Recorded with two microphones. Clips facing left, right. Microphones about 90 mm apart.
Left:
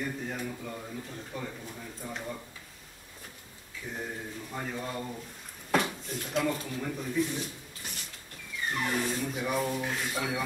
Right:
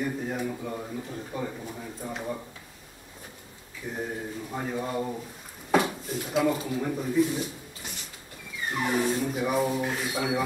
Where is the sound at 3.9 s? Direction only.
10° right (ahead or behind).